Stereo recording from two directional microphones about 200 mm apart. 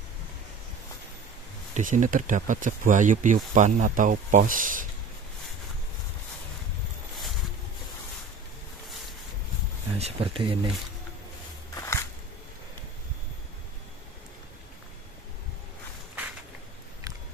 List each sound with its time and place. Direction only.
1.7 s speech: 40° right (ahead or behind)
9.9 s speech: 30° right (ahead or behind)
11.7 s a sound: 15° left (ahead or behind)